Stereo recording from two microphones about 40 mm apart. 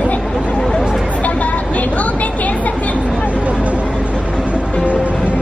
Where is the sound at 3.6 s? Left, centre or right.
Right.